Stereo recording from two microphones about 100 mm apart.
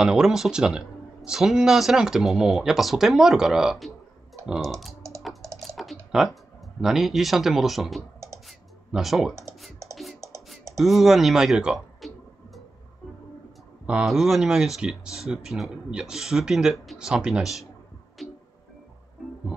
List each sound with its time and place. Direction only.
0.0 s speech: 5° right (ahead or behind)
5.6 s typing: centre (ahead or behind)
6.8 s speech: 5° right (ahead or behind)
8.5 s music: centre (ahead or behind)
10.8 s speech: centre (ahead or behind)
13.8 s speech: 5° right (ahead or behind)
18.2 s music: centre (ahead or behind)